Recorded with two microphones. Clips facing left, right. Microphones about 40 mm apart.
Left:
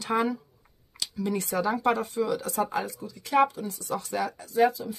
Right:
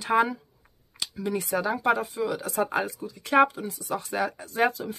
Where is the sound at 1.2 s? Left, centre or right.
Centre.